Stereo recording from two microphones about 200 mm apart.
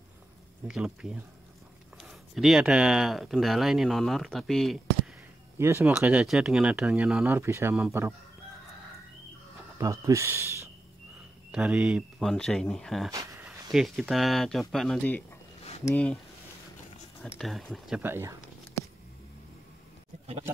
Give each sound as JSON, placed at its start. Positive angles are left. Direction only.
{"t": 0.7, "sound": "speech", "side_deg": -5}
{"t": 5.6, "sound": "speech", "side_deg": -10}
{"t": 9.8, "sound": "speech", "side_deg": -15}
{"t": 13.1, "sound": "a sound", "side_deg": -15}
{"t": 13.5, "sound": "speech", "side_deg": 0}
{"t": 17.4, "sound": "speech", "side_deg": 0}